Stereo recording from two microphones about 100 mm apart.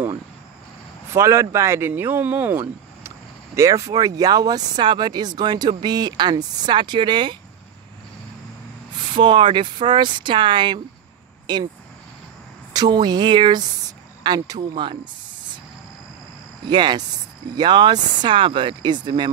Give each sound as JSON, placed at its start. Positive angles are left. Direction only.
{"t": 1.1, "sound": "speech", "side_deg": -30}
{"t": 3.5, "sound": "speech", "side_deg": -30}
{"t": 9.1, "sound": "speech", "side_deg": -55}
{"t": 12.7, "sound": "speech", "side_deg": -45}
{"t": 16.6, "sound": "speech", "side_deg": -50}